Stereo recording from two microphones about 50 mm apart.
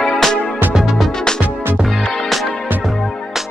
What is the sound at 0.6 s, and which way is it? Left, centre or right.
Music, right.